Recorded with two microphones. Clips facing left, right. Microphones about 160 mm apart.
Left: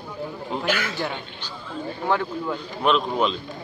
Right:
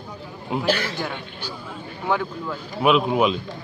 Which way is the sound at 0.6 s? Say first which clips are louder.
Right 2 dB; 35° right (ahead or behind).